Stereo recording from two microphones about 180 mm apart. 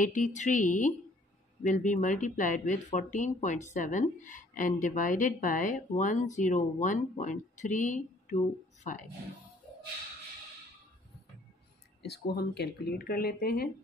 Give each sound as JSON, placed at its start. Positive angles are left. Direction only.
{"t": 0.0, "sound": "a woman's voice", "side_deg": 45}
{"t": 12.0, "sound": "speech", "side_deg": 65}